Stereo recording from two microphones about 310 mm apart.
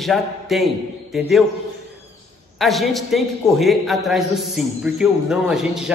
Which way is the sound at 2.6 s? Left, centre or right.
Centre.